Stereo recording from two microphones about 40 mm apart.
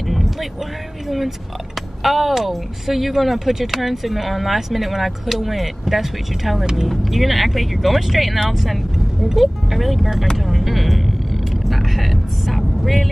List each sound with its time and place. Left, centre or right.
0.1 s vehicle: centre
1.0 s speech: centre
6.6 s speech: centre
6.9 s speech: centre
11.6 s vehicle: centre